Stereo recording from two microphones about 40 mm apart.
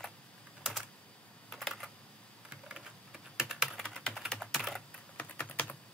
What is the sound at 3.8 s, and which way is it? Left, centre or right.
Typing, left.